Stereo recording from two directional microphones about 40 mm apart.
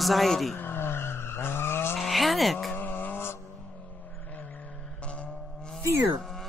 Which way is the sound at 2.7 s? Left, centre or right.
Left.